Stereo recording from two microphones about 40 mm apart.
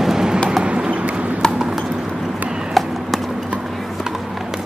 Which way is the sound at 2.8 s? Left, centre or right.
Centre.